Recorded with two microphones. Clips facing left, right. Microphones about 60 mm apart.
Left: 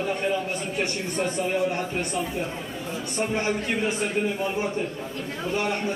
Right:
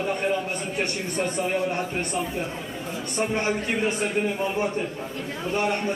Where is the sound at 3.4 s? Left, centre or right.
Centre.